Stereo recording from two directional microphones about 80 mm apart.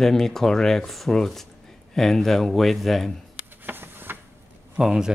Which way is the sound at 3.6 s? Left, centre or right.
Right.